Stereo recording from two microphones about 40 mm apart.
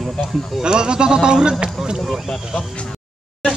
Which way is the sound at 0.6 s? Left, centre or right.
Right.